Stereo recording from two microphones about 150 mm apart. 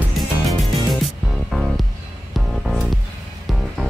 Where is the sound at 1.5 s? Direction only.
Centre (ahead or behind).